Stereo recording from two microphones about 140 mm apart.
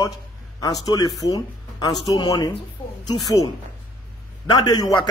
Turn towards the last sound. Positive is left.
turn(degrees=30)  # may be behind; listen again after turning